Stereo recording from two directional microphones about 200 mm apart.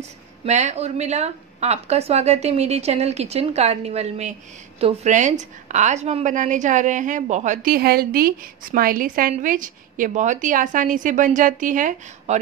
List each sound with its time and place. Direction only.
0.5 s speech: 35° right (ahead or behind)